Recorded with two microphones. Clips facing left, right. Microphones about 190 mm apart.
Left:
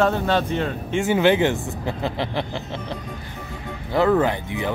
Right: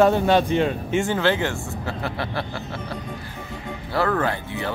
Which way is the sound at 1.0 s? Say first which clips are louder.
Left 8 dB; 15° left (ahead or behind).